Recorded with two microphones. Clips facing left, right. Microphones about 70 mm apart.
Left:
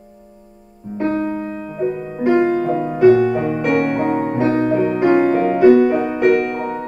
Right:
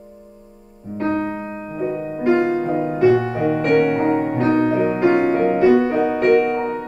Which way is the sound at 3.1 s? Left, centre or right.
Right.